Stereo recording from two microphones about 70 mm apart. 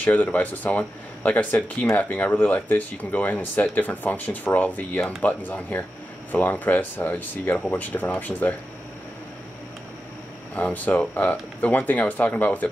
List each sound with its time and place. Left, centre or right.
0.0 s speech: left
10.5 s speech: left